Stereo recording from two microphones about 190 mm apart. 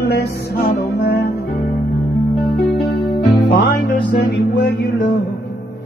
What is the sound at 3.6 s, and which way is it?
Music, 65° left (ahead or behind).